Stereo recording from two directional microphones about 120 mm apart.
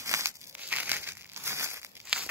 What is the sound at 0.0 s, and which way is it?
Crumpling, 25° right (ahead or behind).